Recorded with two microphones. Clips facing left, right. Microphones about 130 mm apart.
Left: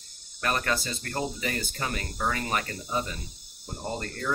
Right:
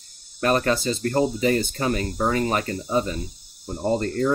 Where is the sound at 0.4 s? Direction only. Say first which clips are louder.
Right 8 dB; 30° right (ahead or behind).